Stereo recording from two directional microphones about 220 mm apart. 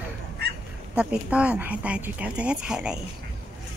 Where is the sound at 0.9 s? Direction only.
5° right (ahead or behind).